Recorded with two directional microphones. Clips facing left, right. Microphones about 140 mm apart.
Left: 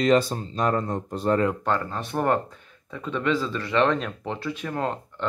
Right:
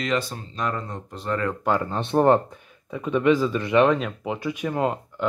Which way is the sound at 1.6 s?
10° right (ahead or behind).